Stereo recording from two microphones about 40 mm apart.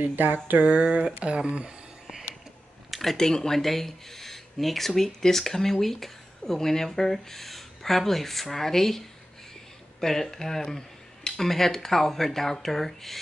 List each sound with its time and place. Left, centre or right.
0.0 s a sound: right
0.7 s speech: right
2.9 s speech: centre